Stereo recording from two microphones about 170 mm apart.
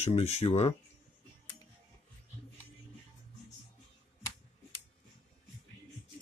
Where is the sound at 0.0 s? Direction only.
40° left (ahead or behind).